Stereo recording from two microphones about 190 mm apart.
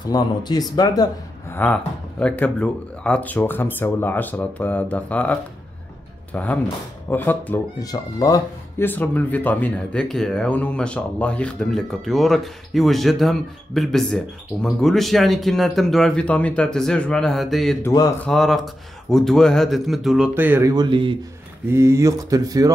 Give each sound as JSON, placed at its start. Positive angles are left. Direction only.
{"t": 0.1, "sound": "speech", "side_deg": 20}
{"t": 1.6, "sound": "speech", "side_deg": 5}
{"t": 17.8, "sound": "speech", "side_deg": 20}
{"t": 18.2, "sound": "speech", "side_deg": 0}
{"t": 20.7, "sound": "speech", "side_deg": -25}
{"t": 21.7, "sound": "speech", "side_deg": -15}